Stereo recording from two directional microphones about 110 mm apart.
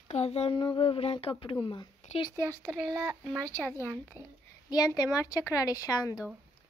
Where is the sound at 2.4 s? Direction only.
20° left (ahead or behind).